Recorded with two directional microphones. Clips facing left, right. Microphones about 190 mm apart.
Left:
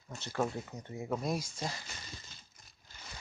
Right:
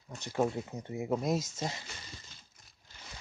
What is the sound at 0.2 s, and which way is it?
Speech, 15° right (ahead or behind).